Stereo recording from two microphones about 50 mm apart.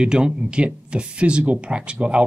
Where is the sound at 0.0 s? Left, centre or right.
Centre.